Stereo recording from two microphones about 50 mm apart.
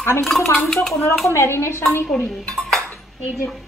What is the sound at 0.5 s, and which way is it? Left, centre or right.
Speech, centre.